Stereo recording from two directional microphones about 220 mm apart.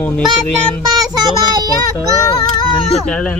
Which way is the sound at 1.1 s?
20° right (ahead or behind).